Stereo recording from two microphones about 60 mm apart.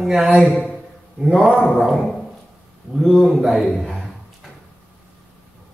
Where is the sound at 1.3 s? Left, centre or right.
Centre.